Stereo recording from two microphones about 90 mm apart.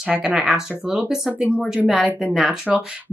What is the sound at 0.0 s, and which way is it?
A woman's voice, 10° right (ahead or behind).